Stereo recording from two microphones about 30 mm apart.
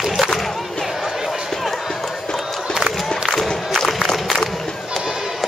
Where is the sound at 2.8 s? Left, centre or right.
Centre.